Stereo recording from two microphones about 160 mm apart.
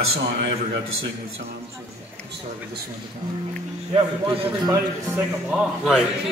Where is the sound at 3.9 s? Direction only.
30° right (ahead or behind).